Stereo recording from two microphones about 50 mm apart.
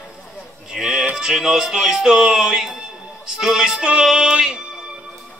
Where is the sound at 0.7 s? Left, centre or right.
Centre.